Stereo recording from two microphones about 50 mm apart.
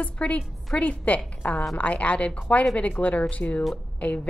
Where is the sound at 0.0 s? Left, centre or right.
Left.